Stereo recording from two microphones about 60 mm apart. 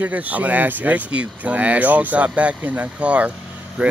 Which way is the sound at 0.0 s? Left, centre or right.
Right.